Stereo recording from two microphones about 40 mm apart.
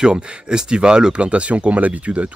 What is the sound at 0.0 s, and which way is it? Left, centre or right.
Speech, centre.